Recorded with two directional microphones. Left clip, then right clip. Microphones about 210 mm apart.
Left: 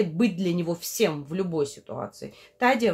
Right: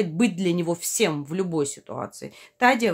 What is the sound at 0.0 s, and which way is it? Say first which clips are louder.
Speech: right 1 dB; 20° right (ahead or behind).